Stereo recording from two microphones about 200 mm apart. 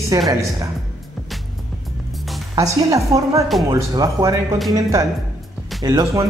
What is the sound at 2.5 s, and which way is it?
Music, 15° right (ahead or behind).